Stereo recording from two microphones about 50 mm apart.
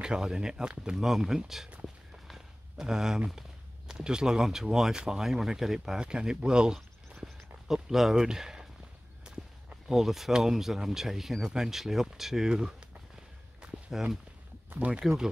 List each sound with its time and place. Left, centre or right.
0.0 s speech: centre
2.3 s a sound: centre
3.3 s speech: centre
13.6 s walk: centre
14.8 s speech: right